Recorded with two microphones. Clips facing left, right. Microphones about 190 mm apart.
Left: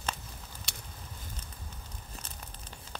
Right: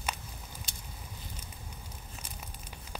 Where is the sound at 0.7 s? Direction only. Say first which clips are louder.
Left 2 dB; 70° left (ahead or behind).